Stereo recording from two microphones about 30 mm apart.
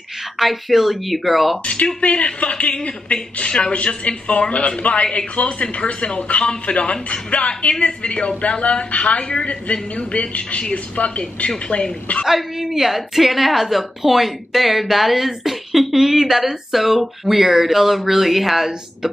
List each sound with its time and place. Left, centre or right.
0.4 s speech: centre
1.6 s speech: left
12.3 s a woman's voice: centre